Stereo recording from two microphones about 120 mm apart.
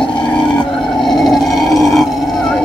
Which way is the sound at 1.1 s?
Centre (ahead or behind).